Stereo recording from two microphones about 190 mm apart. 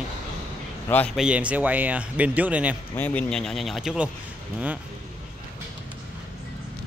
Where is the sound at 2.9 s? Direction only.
10° left (ahead or behind).